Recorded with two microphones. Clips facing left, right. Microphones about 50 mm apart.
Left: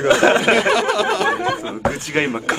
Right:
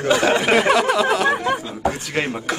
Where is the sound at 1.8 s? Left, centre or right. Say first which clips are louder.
Left 2 dB; left.